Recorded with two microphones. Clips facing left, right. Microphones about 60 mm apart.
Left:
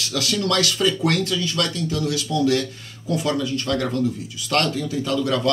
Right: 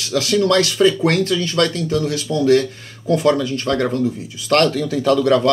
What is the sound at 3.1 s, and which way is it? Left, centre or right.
Speech, right.